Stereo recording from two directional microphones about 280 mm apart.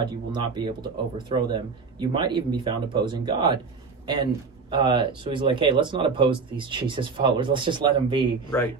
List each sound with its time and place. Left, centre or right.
0.0 s speech: centre